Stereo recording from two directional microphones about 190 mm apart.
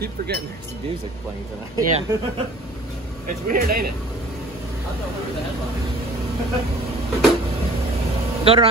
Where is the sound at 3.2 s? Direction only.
50° right (ahead or behind).